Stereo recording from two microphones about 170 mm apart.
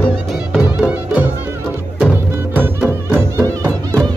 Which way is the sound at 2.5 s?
10° right (ahead or behind).